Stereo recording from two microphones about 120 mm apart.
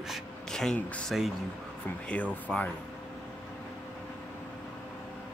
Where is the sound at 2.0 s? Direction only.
10° left (ahead or behind).